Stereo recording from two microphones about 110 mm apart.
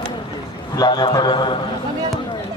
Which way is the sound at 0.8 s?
40° left (ahead or behind).